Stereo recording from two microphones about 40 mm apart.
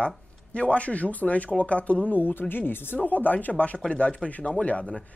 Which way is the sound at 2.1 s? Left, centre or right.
Left.